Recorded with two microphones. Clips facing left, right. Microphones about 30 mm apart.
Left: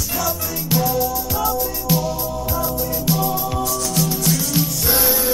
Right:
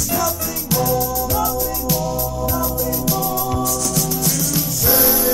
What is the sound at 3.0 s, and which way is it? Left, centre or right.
Music, left.